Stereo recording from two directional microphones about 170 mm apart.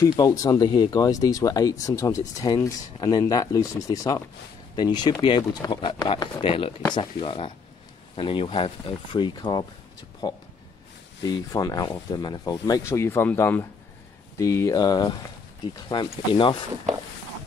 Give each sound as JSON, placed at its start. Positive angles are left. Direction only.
{"t": 0.0, "sound": "speech", "side_deg": 20}